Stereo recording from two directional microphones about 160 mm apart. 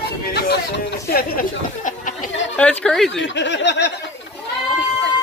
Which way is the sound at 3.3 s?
90° left.